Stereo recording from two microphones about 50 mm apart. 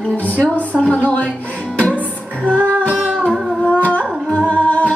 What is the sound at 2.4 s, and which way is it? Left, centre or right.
Music, left.